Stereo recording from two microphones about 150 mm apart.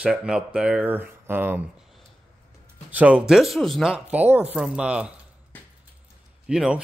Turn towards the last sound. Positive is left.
turn(degrees=-5)  # may be behind; listen again after turning